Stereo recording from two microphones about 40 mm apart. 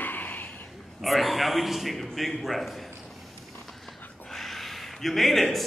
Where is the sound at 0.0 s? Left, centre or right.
Left.